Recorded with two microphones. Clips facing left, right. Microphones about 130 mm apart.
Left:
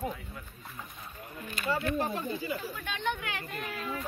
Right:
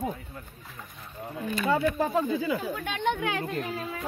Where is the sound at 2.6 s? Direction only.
65° right (ahead or behind).